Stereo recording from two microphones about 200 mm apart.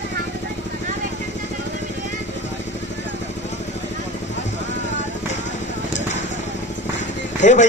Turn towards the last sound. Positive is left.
turn(degrees=40)  # may be behind; listen again after turning